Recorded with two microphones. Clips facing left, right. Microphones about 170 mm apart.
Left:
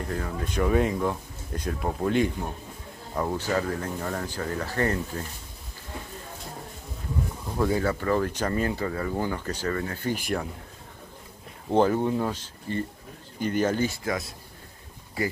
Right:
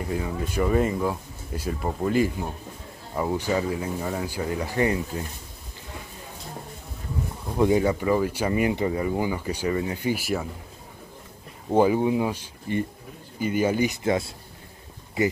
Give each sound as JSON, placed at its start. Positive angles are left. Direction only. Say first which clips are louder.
{"t": 0.0, "sound": "speech", "louder": "right 3 dB", "side_deg": -5}
{"t": 7.5, "sound": "speech", "louder": "right 4 dB", "side_deg": -20}
{"t": 11.7, "sound": "speech", "louder": "right 2 dB", "side_deg": -10}
{"t": 14.0, "sound": "speech", "louder": "right 6 dB", "side_deg": -25}